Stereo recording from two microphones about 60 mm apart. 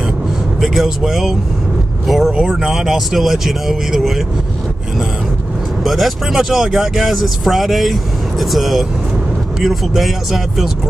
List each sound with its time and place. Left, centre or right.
0.6 s speech: centre
5.9 s speech: centre